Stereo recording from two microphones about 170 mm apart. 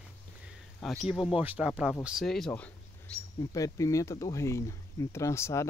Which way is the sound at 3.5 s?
20° left (ahead or behind).